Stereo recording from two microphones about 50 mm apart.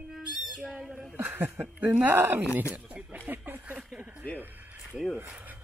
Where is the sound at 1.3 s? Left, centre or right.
Right.